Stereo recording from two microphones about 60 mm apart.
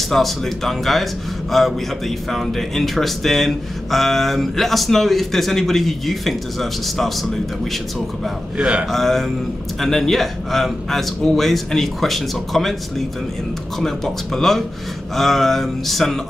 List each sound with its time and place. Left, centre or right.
0.1 s speech: centre
8.5 s a man's voice: centre
8.9 s speech: centre
13.7 s speech: centre